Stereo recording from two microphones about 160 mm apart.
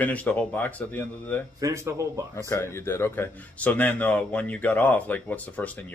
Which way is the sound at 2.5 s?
15° left (ahead or behind).